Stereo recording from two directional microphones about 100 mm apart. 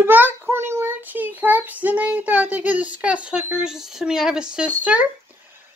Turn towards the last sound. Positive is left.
turn(degrees=-15)  # may be behind; listen again after turning